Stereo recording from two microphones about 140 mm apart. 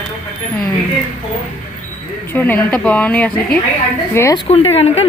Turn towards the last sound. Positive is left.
turn(degrees=45)  # may be behind; listen again after turning